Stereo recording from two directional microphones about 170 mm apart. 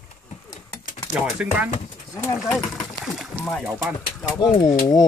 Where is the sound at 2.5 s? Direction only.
Centre (ahead or behind).